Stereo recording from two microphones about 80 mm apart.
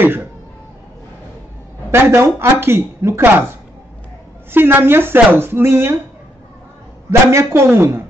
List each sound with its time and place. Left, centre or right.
0.0 s speech: right
1.9 s speech: right
7.1 s speech: right